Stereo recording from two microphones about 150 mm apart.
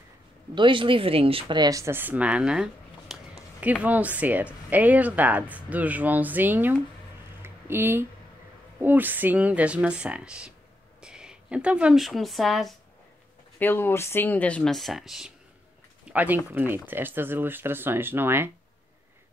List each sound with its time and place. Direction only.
0.6 s speech: 35° right (ahead or behind); by 12.7 s centre (ahead or behind)
13.6 s speech: 15° left (ahead or behind); by 18.5 s 15° right (ahead or behind)